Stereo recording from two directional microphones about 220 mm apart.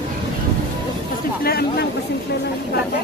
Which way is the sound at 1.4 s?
45° left (ahead or behind).